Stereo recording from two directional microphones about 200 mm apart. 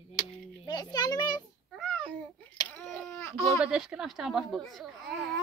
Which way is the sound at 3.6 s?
5° right (ahead or behind).